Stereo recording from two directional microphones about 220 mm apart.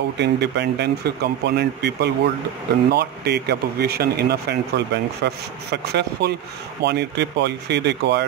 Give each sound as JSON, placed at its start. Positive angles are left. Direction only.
{"t": 0.2, "sound": "speech", "side_deg": -50}